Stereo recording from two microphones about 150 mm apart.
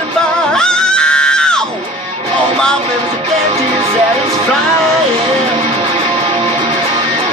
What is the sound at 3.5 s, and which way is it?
Music, 40° right (ahead or behind).